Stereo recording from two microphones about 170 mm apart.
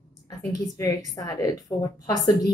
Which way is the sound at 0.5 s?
20° left (ahead or behind).